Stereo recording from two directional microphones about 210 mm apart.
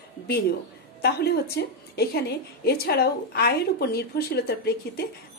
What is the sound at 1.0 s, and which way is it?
A woman's voice, 50° left (ahead or behind).